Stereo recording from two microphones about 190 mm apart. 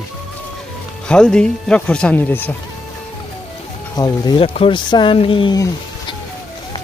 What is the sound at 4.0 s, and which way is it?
Speech, 20° left (ahead or behind).